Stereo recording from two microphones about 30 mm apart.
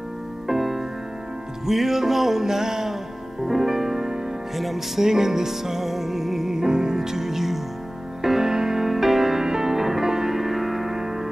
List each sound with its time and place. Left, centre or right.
0.5 s music: centre
2.4 s music: centre
6.5 s music: centre